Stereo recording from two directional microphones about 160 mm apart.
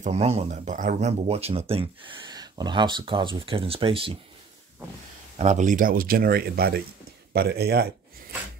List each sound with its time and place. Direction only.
0.0 s speech: 40° right (ahead or behind)
5.4 s speech: 50° right (ahead or behind); by 7.9 s 80° right